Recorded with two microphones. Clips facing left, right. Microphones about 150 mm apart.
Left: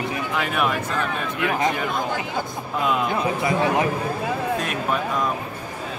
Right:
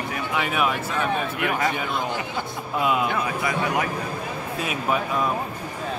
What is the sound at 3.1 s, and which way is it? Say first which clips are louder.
Speech: left 3 dB; 25° left (ahead or behind).